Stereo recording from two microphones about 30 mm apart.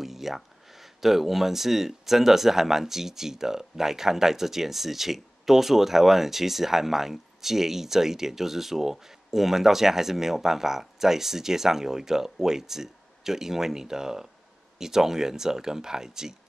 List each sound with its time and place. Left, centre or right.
0.0 s speech: centre